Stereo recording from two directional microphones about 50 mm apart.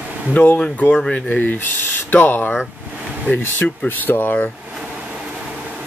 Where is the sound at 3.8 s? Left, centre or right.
Left.